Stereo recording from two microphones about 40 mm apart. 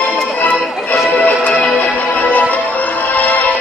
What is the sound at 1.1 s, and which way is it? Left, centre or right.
Music, left.